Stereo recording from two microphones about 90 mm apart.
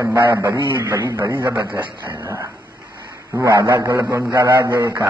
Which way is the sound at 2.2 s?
35° right (ahead or behind).